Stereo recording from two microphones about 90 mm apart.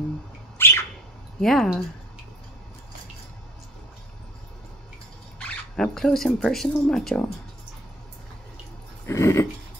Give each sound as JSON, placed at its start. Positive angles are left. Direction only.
{"t": 0.6, "sound": "bird", "side_deg": 25}
{"t": 1.4, "sound": "speech", "side_deg": 5}
{"t": 5.4, "sound": "speech", "side_deg": 5}
{"t": 9.0, "sound": "dog", "side_deg": 30}